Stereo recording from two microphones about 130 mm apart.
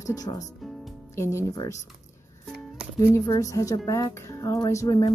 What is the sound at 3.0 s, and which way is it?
A woman's voice, 20° left (ahead or behind).